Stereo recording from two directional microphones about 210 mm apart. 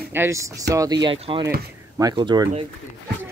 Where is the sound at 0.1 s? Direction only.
10° right (ahead or behind).